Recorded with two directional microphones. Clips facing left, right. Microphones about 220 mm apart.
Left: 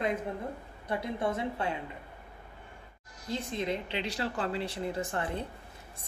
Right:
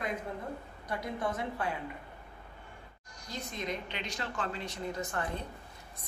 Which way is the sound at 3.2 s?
25° left (ahead or behind).